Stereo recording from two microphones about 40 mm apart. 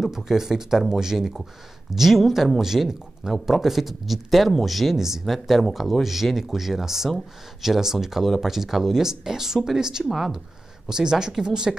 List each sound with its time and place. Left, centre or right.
0.0 s speech: centre
5.2 s speech: centre